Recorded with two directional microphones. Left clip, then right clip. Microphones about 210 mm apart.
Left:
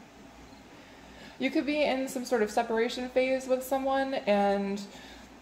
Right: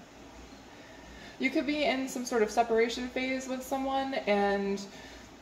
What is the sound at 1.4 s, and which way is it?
A woman's voice, 35° left (ahead or behind).